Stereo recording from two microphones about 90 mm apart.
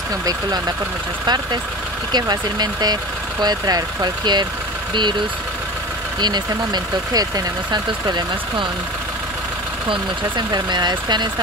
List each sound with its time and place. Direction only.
0.2 s speech: 45° right (ahead or behind)
6.2 s speech: 55° right (ahead or behind)
9.8 s speech: 60° right (ahead or behind)